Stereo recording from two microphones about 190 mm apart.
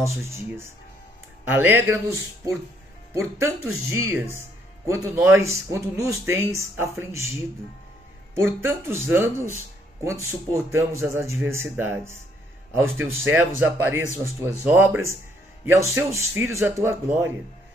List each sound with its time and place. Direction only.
0.0 s speech: 15° right (ahead or behind)
8.4 s speech: 10° right (ahead or behind)